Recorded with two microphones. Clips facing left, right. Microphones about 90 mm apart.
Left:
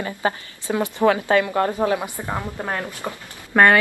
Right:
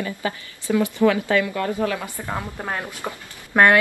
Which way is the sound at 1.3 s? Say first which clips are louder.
Left 3 dB; 35° left (ahead or behind).